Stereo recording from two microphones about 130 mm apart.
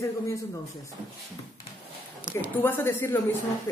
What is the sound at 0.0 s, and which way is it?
Speech, 25° left (ahead or behind).